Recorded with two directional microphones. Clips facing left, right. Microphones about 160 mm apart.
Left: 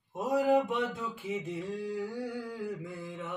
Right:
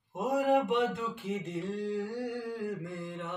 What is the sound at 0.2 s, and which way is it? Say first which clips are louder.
Mantra: left 1 dB; centre (ahead or behind).